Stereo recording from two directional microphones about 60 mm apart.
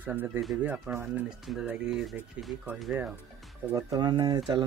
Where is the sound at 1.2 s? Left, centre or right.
Centre.